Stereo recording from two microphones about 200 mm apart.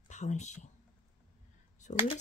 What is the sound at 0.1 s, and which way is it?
Speech, 35° left (ahead or behind).